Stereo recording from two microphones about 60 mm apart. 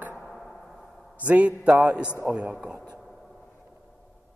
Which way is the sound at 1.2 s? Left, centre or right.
Right.